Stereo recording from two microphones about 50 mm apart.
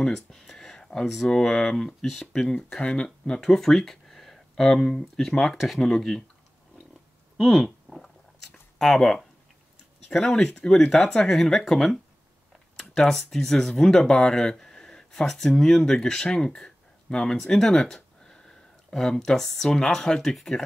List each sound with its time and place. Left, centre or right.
0.0 s speech: centre
2.5 s speech: left
3.4 s speech: centre
7.4 s speech: centre